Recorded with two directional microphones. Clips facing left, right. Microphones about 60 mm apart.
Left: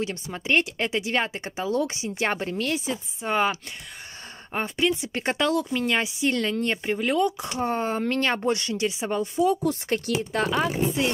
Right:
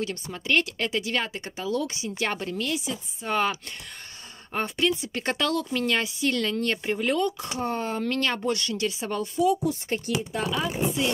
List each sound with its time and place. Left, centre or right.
0.0 s speech: left
3.2 s speech: left
6.9 s speech: centre
7.4 s speech: left
9.7 s speech: left
10.3 s speech: left